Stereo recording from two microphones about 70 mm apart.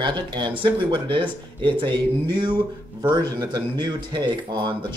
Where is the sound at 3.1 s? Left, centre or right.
Right.